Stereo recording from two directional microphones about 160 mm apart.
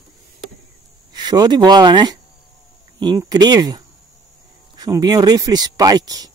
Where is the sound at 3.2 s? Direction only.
25° right (ahead or behind).